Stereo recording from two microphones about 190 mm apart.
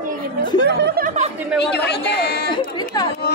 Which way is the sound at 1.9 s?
60° left (ahead or behind).